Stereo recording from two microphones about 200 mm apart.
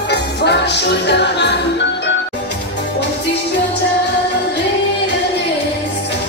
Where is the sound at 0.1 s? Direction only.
55° left (ahead or behind).